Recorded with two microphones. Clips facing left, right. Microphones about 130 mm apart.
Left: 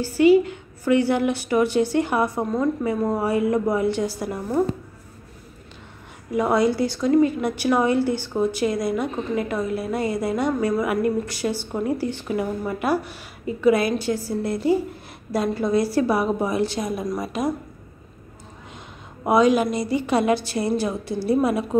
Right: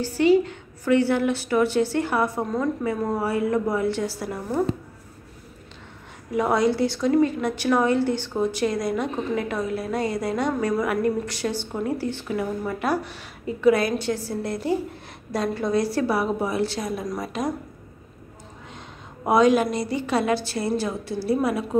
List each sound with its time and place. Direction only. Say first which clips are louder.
0.0 s a woman's voice: left 3 dB; 10° left (ahead or behind)
6.3 s a woman's voice: left 1 dB; centre (ahead or behind)
19.2 s a woman's voice: left 1 dB; centre (ahead or behind); by 21.6 s 20° left (ahead or behind)